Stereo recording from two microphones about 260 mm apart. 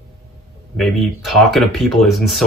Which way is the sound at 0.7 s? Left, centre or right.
Centre.